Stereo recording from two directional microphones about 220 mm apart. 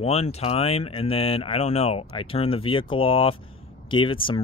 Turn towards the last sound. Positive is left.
turn(degrees=25)  # may be behind; listen again after turning